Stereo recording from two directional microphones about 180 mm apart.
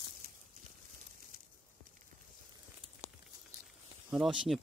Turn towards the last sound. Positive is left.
turn(degrees=0)  # may be behind; listen again after turning